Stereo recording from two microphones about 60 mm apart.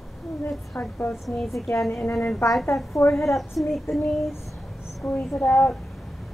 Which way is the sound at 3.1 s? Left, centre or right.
Centre.